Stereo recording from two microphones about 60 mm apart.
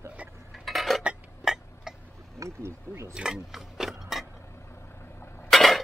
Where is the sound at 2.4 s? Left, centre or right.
Right.